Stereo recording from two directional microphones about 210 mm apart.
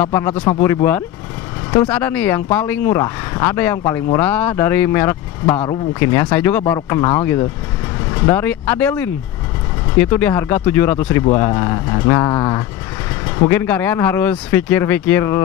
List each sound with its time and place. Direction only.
0.0 s speech: 10° left (ahead or behind)
0.3 s a man's voice: 25° left (ahead or behind)
0.6 s speech: 10° left (ahead or behind)